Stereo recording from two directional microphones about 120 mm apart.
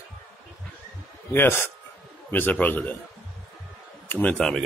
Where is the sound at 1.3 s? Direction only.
20° left (ahead or behind).